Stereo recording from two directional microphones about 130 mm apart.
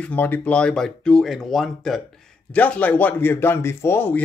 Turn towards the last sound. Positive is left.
turn(degrees=15)  # may be behind; listen again after turning